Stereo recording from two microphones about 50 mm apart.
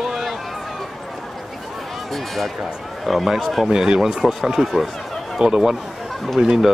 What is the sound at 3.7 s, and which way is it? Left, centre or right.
Speech, centre.